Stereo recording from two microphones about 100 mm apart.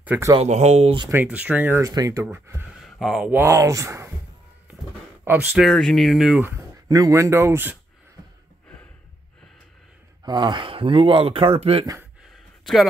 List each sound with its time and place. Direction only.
0.4 s speech: 90° right
1.1 s speech: 15° right (ahead or behind)
1.8 s speech: 35° right (ahead or behind)
2.2 s speech: 25° right (ahead or behind)
2.8 s a sound: centre (ahead or behind)
3.4 s speech: 30° right (ahead or behind)
5.2 s speech: 15° right (ahead or behind)
5.7 s speech: 5° left (ahead or behind)
6.9 s speech: 35° right (ahead or behind)
10.2 s speech: 50° right (ahead or behind); by 11.8 s 70° right (ahead or behind)